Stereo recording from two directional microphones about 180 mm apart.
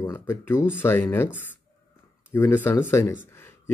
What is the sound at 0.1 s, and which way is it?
A man's voice, 10° left (ahead or behind).